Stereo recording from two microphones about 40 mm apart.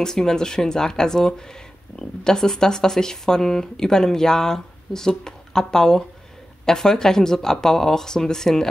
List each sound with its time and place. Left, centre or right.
0.0 s speech: centre